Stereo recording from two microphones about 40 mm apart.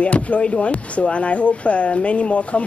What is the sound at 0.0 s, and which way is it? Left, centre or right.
Speech, left.